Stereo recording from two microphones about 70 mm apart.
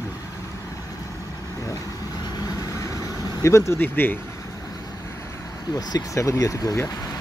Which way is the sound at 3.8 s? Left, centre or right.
Left.